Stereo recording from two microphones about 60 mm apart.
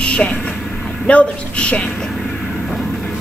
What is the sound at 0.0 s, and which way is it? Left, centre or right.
Vehicle, centre.